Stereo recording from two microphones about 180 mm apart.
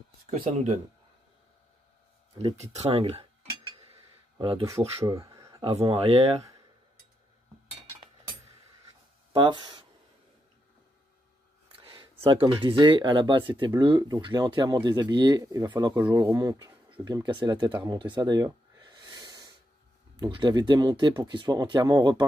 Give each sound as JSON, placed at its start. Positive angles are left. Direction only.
{"t": 0.3, "sound": "speech", "side_deg": -45}
{"t": 2.3, "sound": "speech", "side_deg": -35}
{"t": 4.4, "sound": "speech", "side_deg": -30}
{"t": 5.0, "sound": "speech", "side_deg": -20}
{"t": 9.3, "sound": "speech", "side_deg": -25}
{"t": 11.7, "sound": "a sound", "side_deg": -30}
{"t": 12.3, "sound": "speech", "side_deg": -30}